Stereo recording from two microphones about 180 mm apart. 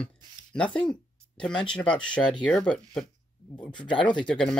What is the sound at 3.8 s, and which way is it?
Speech, 25° left (ahead or behind).